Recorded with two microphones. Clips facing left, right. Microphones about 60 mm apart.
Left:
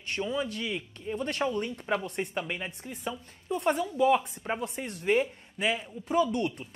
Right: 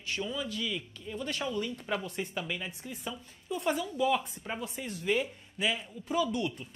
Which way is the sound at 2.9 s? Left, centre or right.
Left.